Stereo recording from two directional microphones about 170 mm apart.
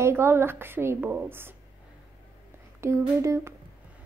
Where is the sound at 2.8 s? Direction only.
15° right (ahead or behind).